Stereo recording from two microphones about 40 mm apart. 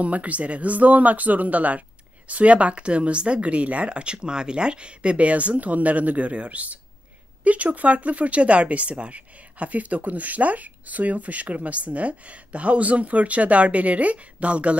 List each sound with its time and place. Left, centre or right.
0.0 s speech: right